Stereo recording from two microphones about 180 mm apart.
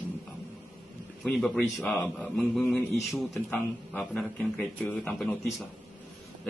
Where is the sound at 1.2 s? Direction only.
Centre (ahead or behind).